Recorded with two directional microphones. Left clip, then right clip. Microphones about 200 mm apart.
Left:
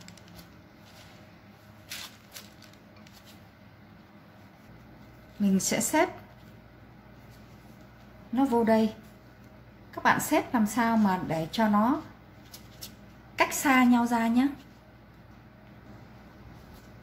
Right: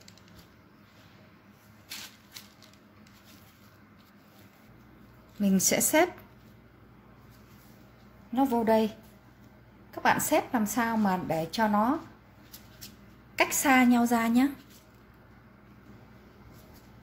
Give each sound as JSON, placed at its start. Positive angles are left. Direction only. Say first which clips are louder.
{"t": 5.4, "sound": "a woman's voice", "louder": "right 2 dB", "side_deg": -45}
{"t": 8.4, "sound": "a woman's voice", "louder": "even", "side_deg": -40}
{"t": 10.0, "sound": "a woman's voice", "louder": "even", "side_deg": -40}
{"t": 13.4, "sound": "a woman's voice", "louder": "even", "side_deg": -40}